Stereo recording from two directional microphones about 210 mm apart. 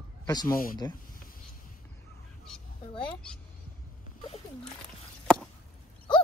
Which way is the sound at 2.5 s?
5° left (ahead or behind).